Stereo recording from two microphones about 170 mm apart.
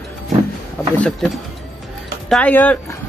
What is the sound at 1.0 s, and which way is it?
Speech, centre (ahead or behind).